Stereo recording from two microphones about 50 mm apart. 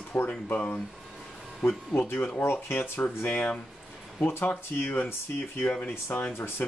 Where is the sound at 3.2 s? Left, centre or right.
Left.